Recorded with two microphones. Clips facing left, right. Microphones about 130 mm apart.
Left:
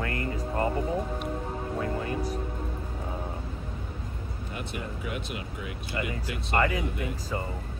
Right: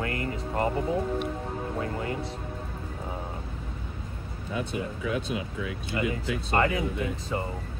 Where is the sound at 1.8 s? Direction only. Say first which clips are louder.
Left 3 dB; 25° right (ahead or behind).